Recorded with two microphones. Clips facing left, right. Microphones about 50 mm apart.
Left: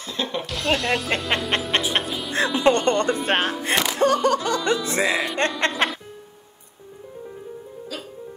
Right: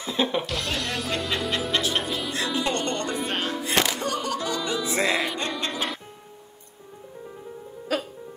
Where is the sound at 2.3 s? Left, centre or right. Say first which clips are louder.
Left 9 dB; left.